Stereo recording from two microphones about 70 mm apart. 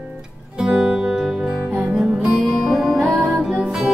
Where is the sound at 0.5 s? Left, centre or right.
Centre.